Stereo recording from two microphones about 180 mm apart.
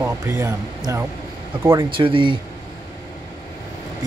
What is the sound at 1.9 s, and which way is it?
Speech, 30° right (ahead or behind).